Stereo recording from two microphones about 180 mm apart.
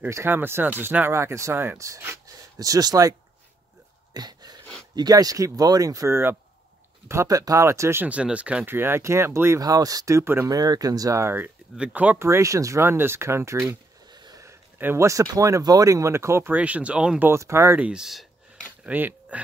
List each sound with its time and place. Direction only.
0.0 s speech: 10° right (ahead or behind)
4.1 s a sound: 20° right (ahead or behind)
4.9 s speech: 20° right (ahead or behind)